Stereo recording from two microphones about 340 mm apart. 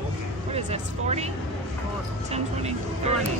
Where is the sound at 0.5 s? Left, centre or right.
Centre.